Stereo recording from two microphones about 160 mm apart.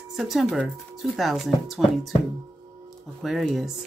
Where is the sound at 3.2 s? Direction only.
Centre (ahead or behind).